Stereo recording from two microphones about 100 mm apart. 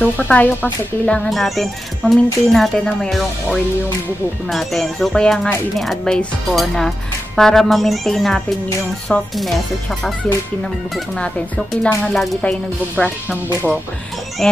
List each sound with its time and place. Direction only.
0.0 s speech: 15° left (ahead or behind)
4.5 s speech: centre (ahead or behind)
11.1 s speech: 10° left (ahead or behind)
12.4 s speech: 10° left (ahead or behind)
14.4 s speech: 5° left (ahead or behind)